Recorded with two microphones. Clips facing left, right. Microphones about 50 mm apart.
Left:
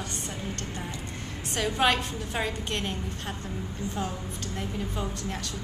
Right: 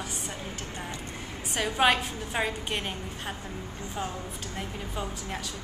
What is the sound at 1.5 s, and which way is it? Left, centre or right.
A woman's voice, centre.